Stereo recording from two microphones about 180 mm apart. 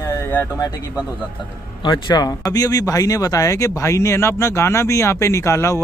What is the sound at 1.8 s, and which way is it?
Speech, 25° left (ahead or behind).